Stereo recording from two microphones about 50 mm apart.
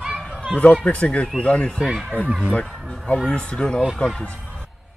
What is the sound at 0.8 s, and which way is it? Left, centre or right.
Speech, left.